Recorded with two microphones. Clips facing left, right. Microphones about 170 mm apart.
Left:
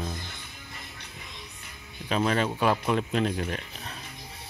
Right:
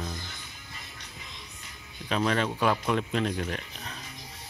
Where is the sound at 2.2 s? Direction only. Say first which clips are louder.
Left 1 dB; 5° left (ahead or behind).